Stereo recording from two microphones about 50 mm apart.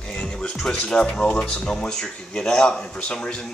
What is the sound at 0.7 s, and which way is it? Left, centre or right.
Speech, centre.